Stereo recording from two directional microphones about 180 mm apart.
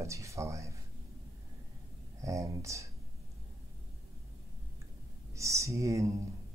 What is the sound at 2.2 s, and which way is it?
Speech, 15° right (ahead or behind).